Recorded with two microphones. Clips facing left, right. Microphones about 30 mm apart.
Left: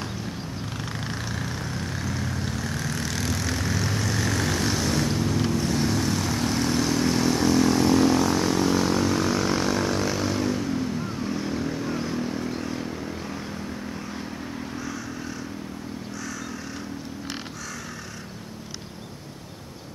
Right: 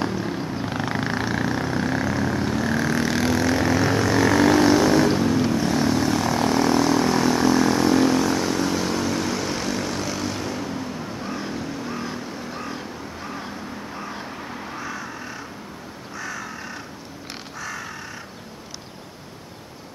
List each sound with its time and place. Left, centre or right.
0.2 s purr: right
0.7 s vehicle: right; by 12.6 s centre